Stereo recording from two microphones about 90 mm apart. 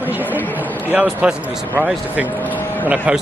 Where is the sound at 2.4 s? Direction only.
20° left (ahead or behind).